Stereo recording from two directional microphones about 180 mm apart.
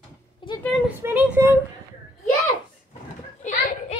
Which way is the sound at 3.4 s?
40° left (ahead or behind).